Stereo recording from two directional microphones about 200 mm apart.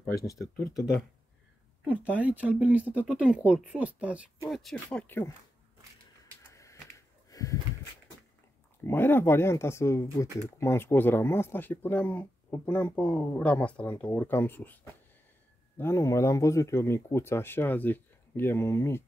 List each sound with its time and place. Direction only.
0.0 s speech: 15° left (ahead or behind)
1.9 s speech: 5° right (ahead or behind); by 5.3 s 10° left (ahead or behind)
6.5 s a sound: 15° left (ahead or behind)
8.8 s speech: 10° left (ahead or behind)
15.8 s speech: 15° left (ahead or behind)